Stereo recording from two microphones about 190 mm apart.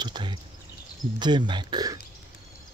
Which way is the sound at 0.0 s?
25° right (ahead or behind).